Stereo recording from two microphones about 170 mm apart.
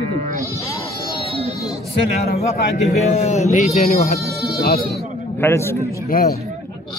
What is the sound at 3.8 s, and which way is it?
Speech, 60° left (ahead or behind).